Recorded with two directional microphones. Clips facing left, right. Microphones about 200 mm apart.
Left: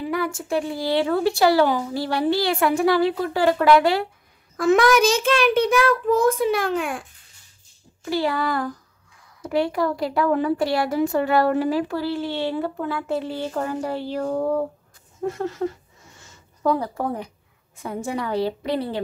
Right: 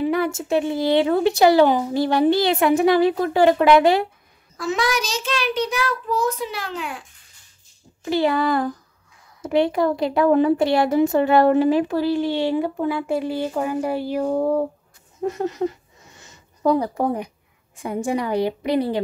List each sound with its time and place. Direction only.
0.0 s a woman's voice: 25° right (ahead or behind)
4.6 s a child's voice: 55° left (ahead or behind)
8.0 s a woman's voice: 20° right (ahead or behind)
15.2 s a sound: 15° right (ahead or behind)
17.8 s a woman's voice: 15° right (ahead or behind)